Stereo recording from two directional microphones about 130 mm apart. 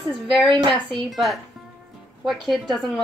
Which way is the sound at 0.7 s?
Centre (ahead or behind).